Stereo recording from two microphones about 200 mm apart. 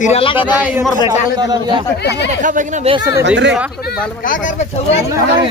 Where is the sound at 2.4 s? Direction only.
40° right (ahead or behind).